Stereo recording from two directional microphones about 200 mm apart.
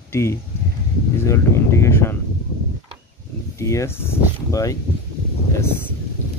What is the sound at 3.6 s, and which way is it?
Speech, 15° left (ahead or behind).